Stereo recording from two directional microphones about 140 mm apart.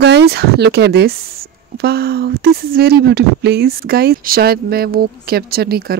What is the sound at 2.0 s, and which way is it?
Speech, 90° right.